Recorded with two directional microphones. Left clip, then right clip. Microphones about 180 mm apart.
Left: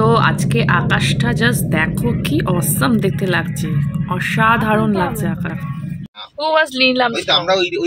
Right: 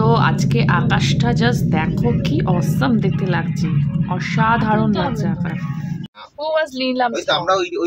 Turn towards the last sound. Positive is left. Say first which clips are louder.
# left 2 dB
turn(degrees=-55)  # may be behind; listen again after turning